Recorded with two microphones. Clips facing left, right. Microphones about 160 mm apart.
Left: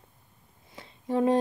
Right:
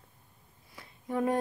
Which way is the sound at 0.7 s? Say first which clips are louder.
Left 5 dB; 25° left (ahead or behind).